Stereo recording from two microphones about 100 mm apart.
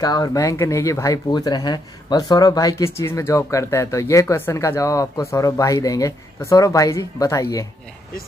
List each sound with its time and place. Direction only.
0.0 s speech: 35° left (ahead or behind)